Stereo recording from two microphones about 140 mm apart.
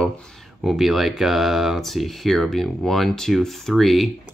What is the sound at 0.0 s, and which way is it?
Speech, 5° left (ahead or behind).